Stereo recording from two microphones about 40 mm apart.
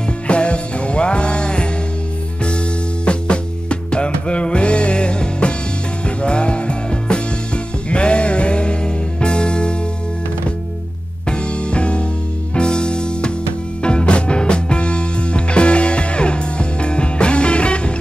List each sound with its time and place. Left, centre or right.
0.3 s music: left
3.1 s music: left
11.2 s music: left